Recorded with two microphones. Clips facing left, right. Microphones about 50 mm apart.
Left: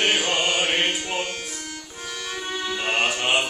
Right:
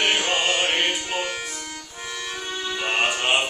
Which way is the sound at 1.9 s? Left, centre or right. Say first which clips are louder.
Even; centre.